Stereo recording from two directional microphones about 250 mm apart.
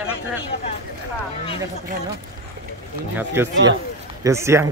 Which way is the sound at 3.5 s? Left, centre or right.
Right.